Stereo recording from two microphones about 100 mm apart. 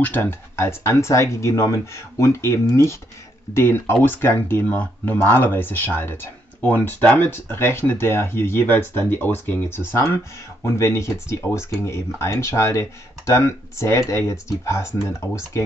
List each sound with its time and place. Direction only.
0.0 s speech: 20° left (ahead or behind)